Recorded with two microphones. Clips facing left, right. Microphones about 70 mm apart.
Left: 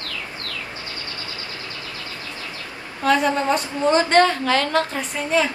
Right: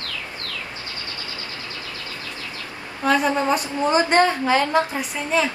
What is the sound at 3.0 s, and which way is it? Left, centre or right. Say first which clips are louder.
A woman's voice: left 1 dB; centre.